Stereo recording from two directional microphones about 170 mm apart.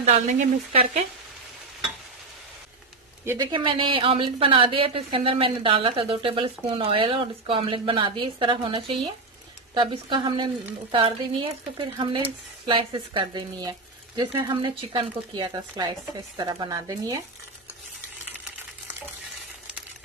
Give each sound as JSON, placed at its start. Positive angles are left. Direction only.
{"t": 0.0, "sound": "speech", "side_deg": -45}
{"t": 3.5, "sound": "a woman's voice", "side_deg": -30}